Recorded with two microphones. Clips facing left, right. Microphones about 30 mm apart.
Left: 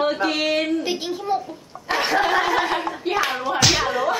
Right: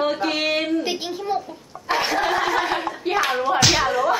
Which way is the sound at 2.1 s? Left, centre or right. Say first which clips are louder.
Left 4 dB; centre.